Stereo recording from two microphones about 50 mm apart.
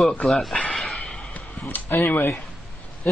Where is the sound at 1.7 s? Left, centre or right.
Left.